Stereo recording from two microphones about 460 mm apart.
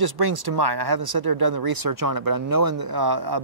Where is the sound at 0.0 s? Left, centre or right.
Right.